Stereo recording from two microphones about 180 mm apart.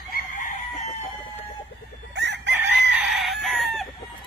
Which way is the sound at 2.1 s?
75° right (ahead or behind).